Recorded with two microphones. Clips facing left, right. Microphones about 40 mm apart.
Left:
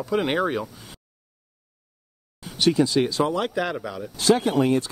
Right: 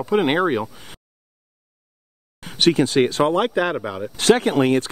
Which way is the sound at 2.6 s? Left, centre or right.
Right.